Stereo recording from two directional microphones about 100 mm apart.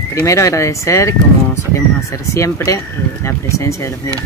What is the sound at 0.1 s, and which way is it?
Speech, 30° left (ahead or behind).